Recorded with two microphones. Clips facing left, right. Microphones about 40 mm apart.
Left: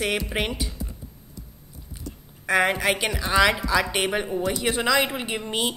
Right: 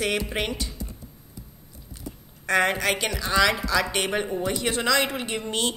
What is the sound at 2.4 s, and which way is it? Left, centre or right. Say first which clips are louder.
Speech: left 1 dB; centre.